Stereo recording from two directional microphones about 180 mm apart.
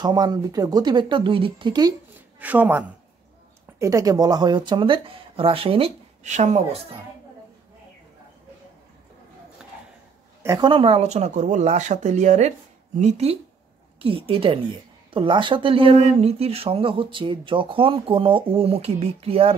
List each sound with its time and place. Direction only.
0.0 s speech: 20° right (ahead or behind)
2.3 s speech: 10° right (ahead or behind)
3.8 s speech: 20° right (ahead or behind); by 7.0 s 35° right (ahead or behind)
10.4 s speech: 20° right (ahead or behind)